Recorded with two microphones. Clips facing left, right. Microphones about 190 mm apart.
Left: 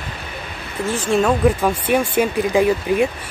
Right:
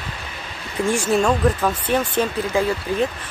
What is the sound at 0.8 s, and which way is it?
Speech, 10° right (ahead or behind).